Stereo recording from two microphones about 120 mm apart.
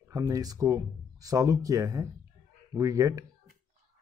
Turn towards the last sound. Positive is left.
turn(degrees=-25)  # may be behind; listen again after turning